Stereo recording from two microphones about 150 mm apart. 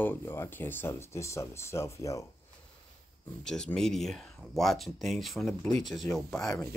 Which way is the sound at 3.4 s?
5° left (ahead or behind).